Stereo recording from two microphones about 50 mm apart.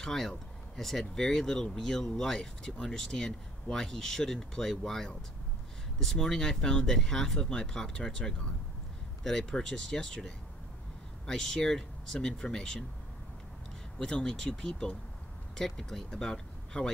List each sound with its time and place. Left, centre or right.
0.0 s speech: centre
13.9 s speech: centre